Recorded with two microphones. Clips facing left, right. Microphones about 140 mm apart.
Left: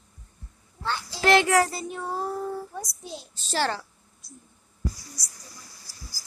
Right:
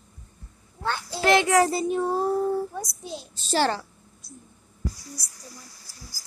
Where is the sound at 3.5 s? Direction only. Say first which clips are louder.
Right 4 dB; 30° right (ahead or behind).